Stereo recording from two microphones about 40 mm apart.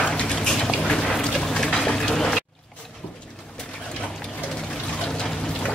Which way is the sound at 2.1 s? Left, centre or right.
Centre.